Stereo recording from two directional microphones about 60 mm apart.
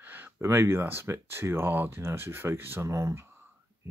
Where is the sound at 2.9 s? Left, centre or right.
Right.